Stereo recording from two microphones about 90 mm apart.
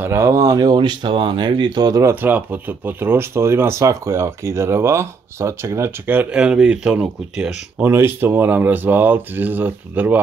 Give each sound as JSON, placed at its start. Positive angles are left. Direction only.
{"t": 0.0, "sound": "speech", "side_deg": -35}
{"t": 2.0, "sound": "speech", "side_deg": -20}
{"t": 6.1, "sound": "speech", "side_deg": -10}
{"t": 7.8, "sound": "speech", "side_deg": -25}